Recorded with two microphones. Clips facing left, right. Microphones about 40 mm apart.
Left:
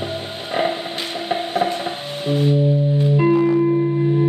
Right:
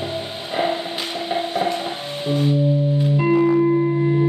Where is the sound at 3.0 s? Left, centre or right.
Centre.